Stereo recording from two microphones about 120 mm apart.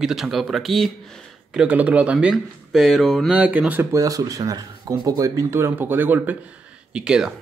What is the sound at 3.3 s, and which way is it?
Speech, 10° right (ahead or behind).